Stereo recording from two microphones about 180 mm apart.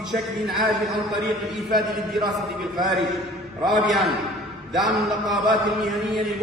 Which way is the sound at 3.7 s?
Centre (ahead or behind).